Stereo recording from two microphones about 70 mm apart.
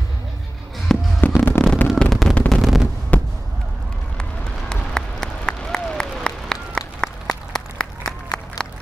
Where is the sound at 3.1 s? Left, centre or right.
Left.